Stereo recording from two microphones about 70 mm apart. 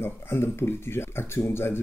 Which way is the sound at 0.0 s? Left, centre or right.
Left.